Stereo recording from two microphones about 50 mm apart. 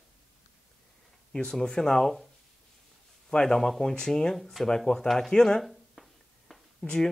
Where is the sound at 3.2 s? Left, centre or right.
Centre.